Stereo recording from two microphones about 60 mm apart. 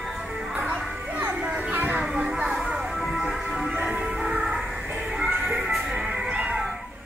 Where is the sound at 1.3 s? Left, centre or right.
Centre.